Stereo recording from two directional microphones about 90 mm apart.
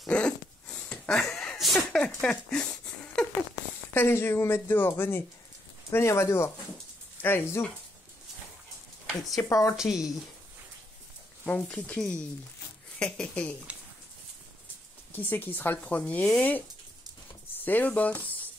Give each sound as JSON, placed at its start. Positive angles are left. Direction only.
{"t": 0.1, "sound": "a sound", "side_deg": 10}
{"t": 3.9, "sound": "a woman's voice", "side_deg": 25}
{"t": 9.5, "sound": "speech", "side_deg": 40}
{"t": 9.8, "sound": "speech", "side_deg": -5}
{"t": 11.4, "sound": "speech", "side_deg": 15}
{"t": 15.1, "sound": "a woman's voice", "side_deg": 20}
{"t": 17.6, "sound": "speech", "side_deg": 20}